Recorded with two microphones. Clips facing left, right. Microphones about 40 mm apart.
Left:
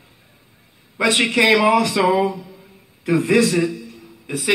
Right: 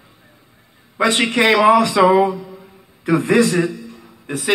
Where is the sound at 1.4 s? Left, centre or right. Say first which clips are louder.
Right 3 dB; right.